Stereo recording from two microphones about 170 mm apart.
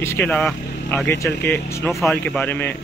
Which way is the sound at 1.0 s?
15° left (ahead or behind).